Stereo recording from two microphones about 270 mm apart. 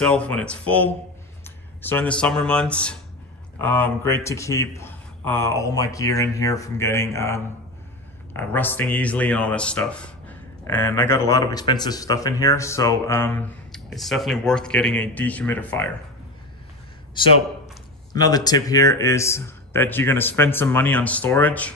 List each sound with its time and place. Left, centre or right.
0.0 s speech: centre
17.1 s a man's voice: centre